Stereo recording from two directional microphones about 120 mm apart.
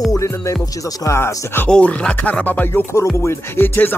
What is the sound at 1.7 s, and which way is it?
Music, 10° left (ahead or behind).